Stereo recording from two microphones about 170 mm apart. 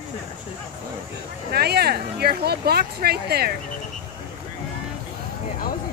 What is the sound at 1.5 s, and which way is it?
Speech, 70° right (ahead or behind).